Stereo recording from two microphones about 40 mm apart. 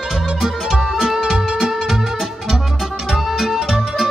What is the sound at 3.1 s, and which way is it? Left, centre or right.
Music, centre.